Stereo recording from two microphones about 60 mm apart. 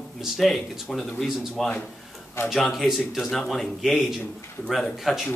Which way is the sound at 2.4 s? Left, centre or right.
Left.